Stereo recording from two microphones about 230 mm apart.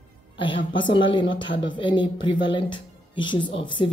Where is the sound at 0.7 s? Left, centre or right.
Left.